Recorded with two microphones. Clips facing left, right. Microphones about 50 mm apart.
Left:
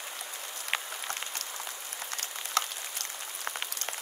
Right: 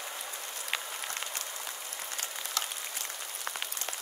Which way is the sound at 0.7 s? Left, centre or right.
Centre.